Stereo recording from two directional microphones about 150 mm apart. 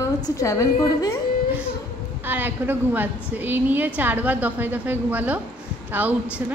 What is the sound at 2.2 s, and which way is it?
A woman's voice, 10° right (ahead or behind).